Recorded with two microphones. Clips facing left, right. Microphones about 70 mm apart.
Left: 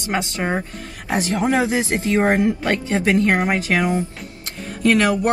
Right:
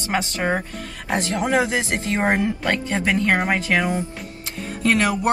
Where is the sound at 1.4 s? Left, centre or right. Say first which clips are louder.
Left 1 dB; left.